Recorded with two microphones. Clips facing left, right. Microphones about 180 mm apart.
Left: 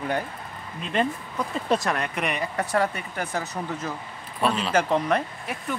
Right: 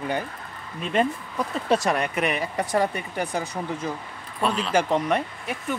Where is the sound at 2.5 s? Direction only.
15° right (ahead or behind).